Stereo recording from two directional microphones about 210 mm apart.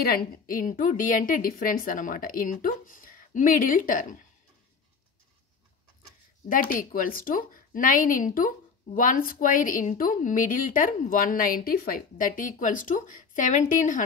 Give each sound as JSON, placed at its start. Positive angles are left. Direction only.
{"t": 0.0, "sound": "a woman's voice", "side_deg": 45}
{"t": 6.5, "sound": "a woman's voice", "side_deg": 40}